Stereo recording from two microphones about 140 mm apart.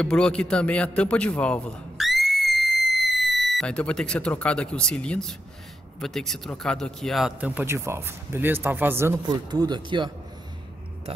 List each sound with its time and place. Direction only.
0.0 s a man's voice: 5° left (ahead or behind)
7.3 s speech: 10° right (ahead or behind)
9.2 s speech: 30° right (ahead or behind)